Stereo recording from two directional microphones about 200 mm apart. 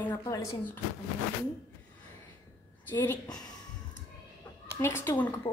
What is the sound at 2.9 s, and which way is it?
Speech, 10° left (ahead or behind).